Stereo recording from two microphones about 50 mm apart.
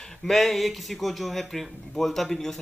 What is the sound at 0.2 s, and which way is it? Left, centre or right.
A man's voice, centre.